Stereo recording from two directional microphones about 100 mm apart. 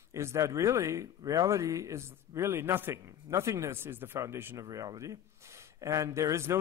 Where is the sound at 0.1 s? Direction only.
30° right (ahead or behind).